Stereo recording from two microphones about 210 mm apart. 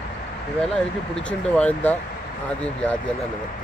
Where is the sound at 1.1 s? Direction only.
5° left (ahead or behind).